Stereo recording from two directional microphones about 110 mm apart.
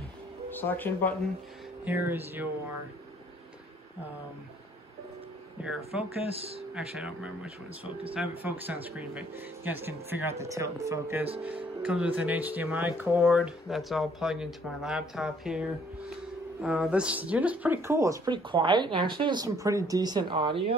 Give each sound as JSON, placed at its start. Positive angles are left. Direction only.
{"t": 0.5, "sound": "speech", "side_deg": 15}
{"t": 1.9, "sound": "speech", "side_deg": -20}
{"t": 5.6, "sound": "speech", "side_deg": -5}
{"t": 6.3, "sound": "speech", "side_deg": -60}
{"t": 6.7, "sound": "speech", "side_deg": -10}
{"t": 11.4, "sound": "speech", "side_deg": -10}
{"t": 13.2, "sound": "speech", "side_deg": -5}
{"t": 18.3, "sound": "speech", "side_deg": -50}
{"t": 19.4, "sound": "speech", "side_deg": -30}